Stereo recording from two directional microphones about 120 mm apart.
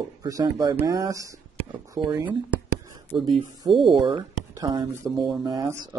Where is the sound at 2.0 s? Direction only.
50° right (ahead or behind).